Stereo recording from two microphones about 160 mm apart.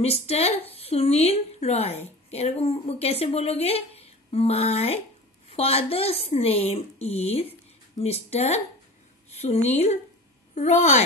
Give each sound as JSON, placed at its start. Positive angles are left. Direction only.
{"t": 0.0, "sound": "a woman's voice", "side_deg": 40}